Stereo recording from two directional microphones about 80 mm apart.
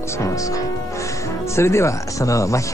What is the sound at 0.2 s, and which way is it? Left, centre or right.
Speech, left.